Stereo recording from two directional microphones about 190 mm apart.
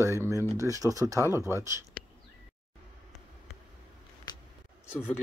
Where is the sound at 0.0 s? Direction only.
15° right (ahead or behind).